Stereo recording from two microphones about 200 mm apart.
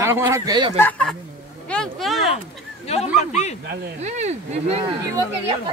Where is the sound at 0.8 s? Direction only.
5° left (ahead or behind).